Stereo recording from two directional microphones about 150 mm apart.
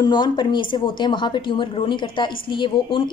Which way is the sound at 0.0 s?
30° left (ahead or behind).